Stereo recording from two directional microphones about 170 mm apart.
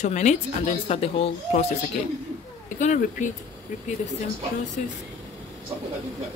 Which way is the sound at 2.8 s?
45° left (ahead or behind).